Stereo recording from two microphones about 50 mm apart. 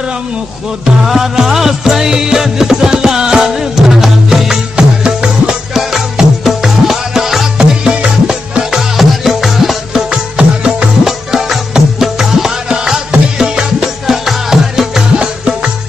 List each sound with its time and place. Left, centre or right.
1.0 s music: centre
7.5 s music: centre
10.1 s music: centre
11.1 s music: centre
15.1 s music: centre